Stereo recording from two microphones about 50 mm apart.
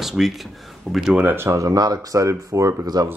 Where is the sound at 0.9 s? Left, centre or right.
Centre.